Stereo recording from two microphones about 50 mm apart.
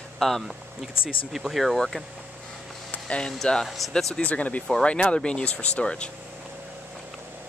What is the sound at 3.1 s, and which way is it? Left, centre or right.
Speech, centre.